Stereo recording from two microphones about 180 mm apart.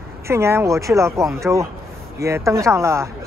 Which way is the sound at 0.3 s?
15° right (ahead or behind).